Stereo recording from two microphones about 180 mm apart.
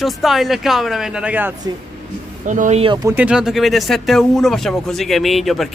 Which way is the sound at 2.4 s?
45° right (ahead or behind).